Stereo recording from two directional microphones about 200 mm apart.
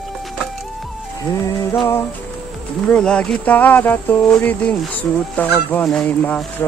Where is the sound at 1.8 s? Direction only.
10° left (ahead or behind).